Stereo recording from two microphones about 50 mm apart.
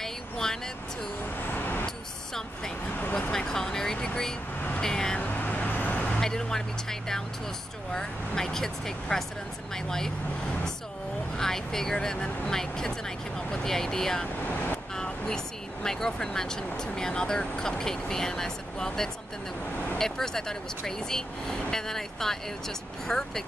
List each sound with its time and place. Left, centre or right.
0.0 s vehicle: centre
1.5 s a sound: left
3.2 s speech: centre
5.2 s vehicle: left
6.1 s speech: centre
11.3 s speech: centre